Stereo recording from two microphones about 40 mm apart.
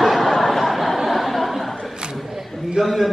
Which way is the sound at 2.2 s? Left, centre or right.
Centre.